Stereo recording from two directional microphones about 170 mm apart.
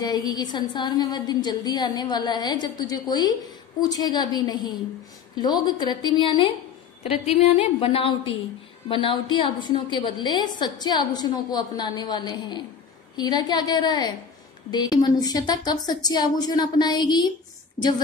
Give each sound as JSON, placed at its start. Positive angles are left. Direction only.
{"t": 0.0, "sound": "a woman's voice", "side_deg": 25}